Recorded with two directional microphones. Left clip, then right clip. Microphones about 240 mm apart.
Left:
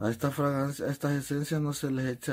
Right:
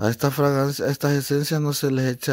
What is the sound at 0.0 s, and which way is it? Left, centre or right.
Speech, right.